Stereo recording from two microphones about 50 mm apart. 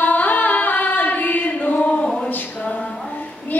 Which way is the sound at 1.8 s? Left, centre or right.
Centre.